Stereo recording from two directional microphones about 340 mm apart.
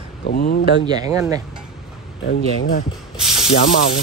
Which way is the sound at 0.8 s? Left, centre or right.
Centre.